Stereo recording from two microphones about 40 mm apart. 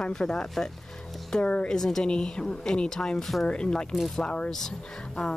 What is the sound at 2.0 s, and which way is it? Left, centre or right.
Speech, left.